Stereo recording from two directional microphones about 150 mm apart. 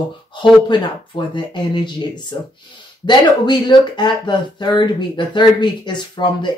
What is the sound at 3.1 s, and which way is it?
Speech, 30° left (ahead or behind).